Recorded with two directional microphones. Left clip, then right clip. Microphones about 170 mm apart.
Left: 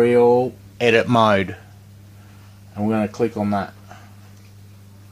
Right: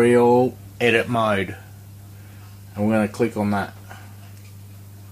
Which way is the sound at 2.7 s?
40° left (ahead or behind).